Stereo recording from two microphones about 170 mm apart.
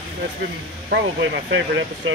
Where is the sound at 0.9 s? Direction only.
90° right.